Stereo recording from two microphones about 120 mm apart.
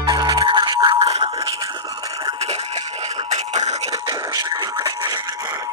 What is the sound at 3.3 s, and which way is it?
Music, 75° right (ahead or behind).